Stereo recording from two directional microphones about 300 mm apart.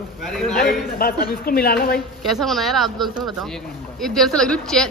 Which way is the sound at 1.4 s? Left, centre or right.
Left.